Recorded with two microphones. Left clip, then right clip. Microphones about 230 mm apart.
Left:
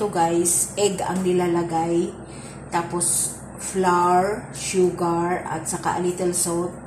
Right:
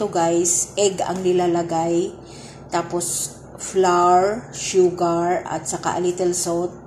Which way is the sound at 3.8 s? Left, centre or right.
Right.